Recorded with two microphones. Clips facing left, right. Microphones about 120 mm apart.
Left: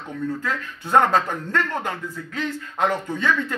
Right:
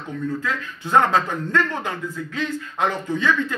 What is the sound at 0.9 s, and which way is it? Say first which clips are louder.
Speech: even; 50° left (ahead or behind).